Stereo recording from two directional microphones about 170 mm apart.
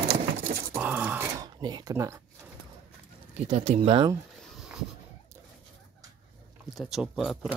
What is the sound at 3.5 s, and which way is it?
Speech, 35° right (ahead or behind).